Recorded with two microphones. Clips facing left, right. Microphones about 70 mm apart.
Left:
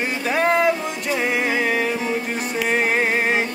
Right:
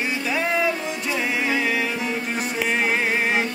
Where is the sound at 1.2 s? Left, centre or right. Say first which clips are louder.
Left 2 dB; left.